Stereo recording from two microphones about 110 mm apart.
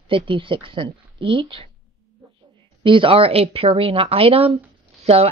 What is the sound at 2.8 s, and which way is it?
Speech, 50° right (ahead or behind).